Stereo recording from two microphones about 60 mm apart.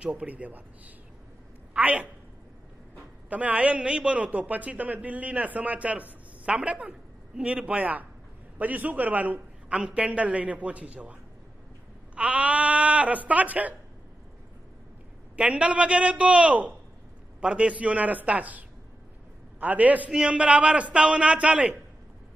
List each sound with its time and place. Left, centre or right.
0.0 s a man's voice: right
3.3 s a man's voice: right
12.2 s a man's voice: right
15.3 s a man's voice: right
20.1 s a man's voice: centre